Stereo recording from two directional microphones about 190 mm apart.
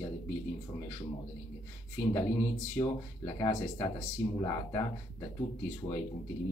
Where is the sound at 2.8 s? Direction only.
15° left (ahead or behind).